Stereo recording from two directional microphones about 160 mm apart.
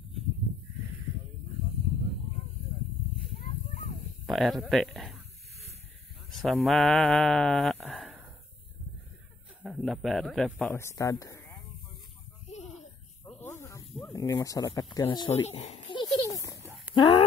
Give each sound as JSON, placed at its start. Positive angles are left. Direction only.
{"t": 4.3, "sound": "speech", "side_deg": 0}
{"t": 6.3, "sound": "a sound", "side_deg": 0}
{"t": 9.6, "sound": "a man's voice", "side_deg": 0}
{"t": 10.7, "sound": "speech", "side_deg": 15}
{"t": 13.2, "sound": "snake", "side_deg": 15}
{"t": 14.0, "sound": "speech", "side_deg": 15}
{"t": 15.0, "sound": "speech", "side_deg": 35}
{"t": 16.0, "sound": "a sound", "side_deg": 20}
{"t": 16.9, "sound": "speech", "side_deg": 30}